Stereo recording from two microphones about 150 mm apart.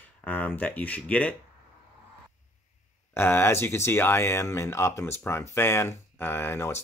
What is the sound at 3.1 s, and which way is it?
Speech, 15° left (ahead or behind).